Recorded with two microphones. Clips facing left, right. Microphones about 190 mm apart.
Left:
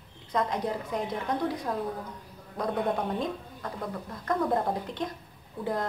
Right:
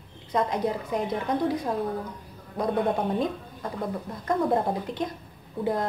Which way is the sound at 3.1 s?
20° right (ahead or behind).